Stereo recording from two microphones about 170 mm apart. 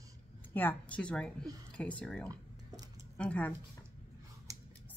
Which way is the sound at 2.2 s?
20° right (ahead or behind).